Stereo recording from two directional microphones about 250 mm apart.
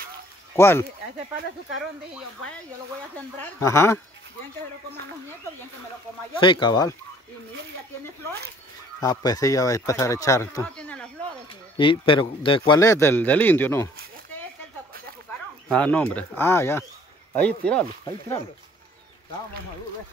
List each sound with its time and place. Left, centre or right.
0.6 s a man's voice: centre
3.5 s a man's voice: centre
6.4 s a man's voice: centre
9.0 s a man's voice: centre
11.7 s a man's voice: centre
15.7 s a man's voice: centre